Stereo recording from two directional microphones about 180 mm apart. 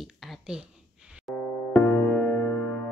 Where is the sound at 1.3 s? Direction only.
10° left (ahead or behind).